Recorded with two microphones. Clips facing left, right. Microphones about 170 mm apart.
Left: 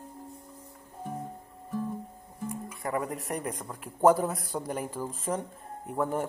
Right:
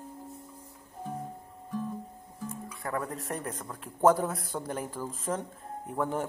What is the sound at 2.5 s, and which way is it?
Speech, 20° left (ahead or behind).